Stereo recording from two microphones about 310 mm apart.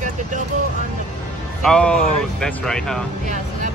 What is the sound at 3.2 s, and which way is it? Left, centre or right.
Speech, right.